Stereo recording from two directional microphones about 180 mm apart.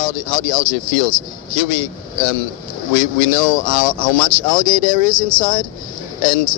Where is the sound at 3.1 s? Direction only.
50° left (ahead or behind).